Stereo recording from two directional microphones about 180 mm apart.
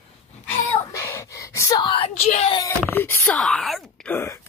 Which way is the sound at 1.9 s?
35° left (ahead or behind).